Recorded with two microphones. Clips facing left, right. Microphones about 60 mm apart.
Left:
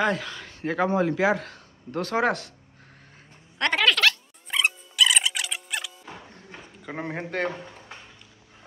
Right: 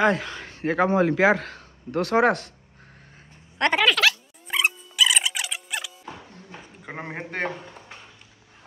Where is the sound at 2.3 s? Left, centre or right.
Right.